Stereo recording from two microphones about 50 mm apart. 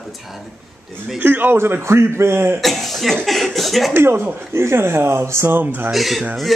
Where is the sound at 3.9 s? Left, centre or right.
Right.